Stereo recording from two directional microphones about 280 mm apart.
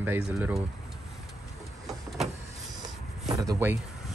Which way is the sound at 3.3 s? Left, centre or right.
Centre.